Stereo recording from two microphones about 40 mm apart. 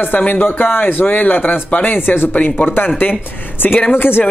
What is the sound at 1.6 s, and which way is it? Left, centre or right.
Speech, left.